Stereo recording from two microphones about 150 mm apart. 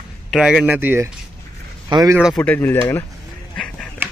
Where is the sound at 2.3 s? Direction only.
10° left (ahead or behind).